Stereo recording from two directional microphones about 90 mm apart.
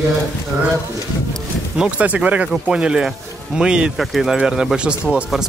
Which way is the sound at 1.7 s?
15° right (ahead or behind).